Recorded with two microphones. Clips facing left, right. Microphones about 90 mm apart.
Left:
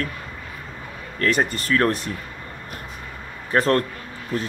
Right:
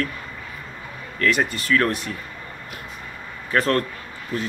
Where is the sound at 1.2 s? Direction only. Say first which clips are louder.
Even; 35° left (ahead or behind).